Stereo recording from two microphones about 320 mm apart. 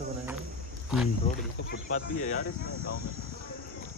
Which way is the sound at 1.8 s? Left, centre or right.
Left.